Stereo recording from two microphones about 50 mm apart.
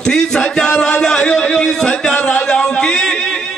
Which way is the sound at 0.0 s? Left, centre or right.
Centre.